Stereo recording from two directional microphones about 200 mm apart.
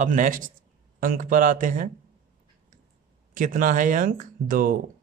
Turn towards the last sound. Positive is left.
turn(degrees=-45)  # may be behind; listen again after turning